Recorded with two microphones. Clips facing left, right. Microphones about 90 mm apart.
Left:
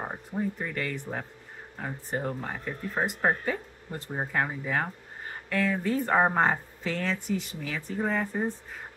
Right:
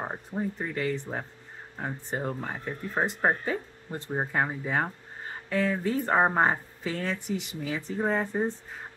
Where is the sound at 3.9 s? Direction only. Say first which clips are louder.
Right 2 dB; 20° right (ahead or behind).